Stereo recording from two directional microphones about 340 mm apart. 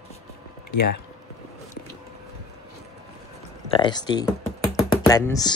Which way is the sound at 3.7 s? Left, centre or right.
Centre.